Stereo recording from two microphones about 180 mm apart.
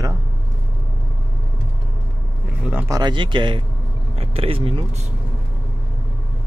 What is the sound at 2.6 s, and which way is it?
Speech, 10° right (ahead or behind).